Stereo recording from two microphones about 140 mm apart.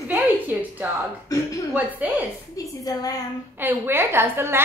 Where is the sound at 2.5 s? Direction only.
25° left (ahead or behind).